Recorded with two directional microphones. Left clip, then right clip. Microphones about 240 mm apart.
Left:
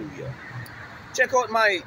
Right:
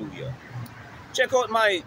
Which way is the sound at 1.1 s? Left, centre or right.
Centre.